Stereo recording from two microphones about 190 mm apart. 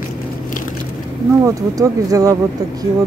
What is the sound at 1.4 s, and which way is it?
Speech, 15° right (ahead or behind).